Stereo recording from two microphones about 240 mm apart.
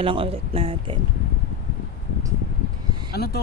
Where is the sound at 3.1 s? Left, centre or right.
Left.